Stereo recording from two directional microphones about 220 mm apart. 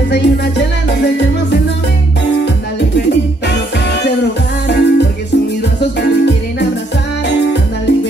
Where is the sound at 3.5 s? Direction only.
50° left (ahead or behind).